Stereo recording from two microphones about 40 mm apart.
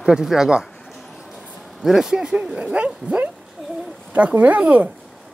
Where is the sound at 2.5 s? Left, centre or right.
Right.